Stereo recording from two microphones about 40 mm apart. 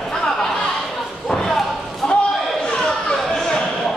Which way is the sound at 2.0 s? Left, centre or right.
Centre.